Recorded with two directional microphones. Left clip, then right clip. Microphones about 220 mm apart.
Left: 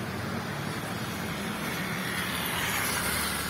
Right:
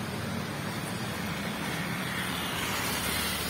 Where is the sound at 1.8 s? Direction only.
55° left (ahead or behind).